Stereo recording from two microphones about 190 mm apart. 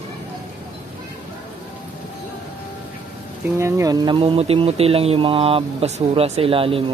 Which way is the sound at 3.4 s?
15° right (ahead or behind).